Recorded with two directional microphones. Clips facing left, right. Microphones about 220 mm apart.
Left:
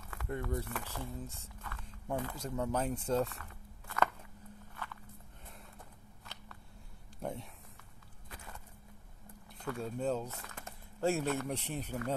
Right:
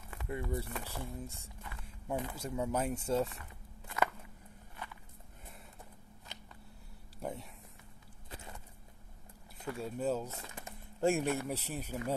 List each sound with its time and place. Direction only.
0.3 s speech: 10° right (ahead or behind)
3.3 s a sound: 20° right (ahead or behind)
7.2 s speech: centre (ahead or behind)
9.7 s speech: 5° right (ahead or behind)